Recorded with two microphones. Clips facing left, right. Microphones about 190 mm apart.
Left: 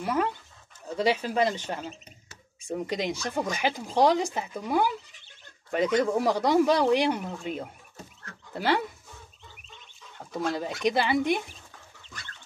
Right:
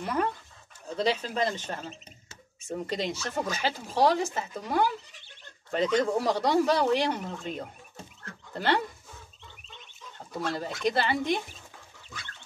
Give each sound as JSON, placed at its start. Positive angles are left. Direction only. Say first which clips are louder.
{"t": 0.8, "sound": "speech", "louder": "left 2 dB", "side_deg": 10}
{"t": 10.1, "sound": "speech", "louder": "left 3 dB", "side_deg": 15}